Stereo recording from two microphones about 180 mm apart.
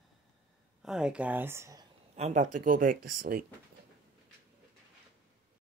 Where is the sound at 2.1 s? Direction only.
40° right (ahead or behind).